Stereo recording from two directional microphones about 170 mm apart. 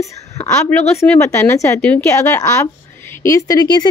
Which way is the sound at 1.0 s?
15° left (ahead or behind).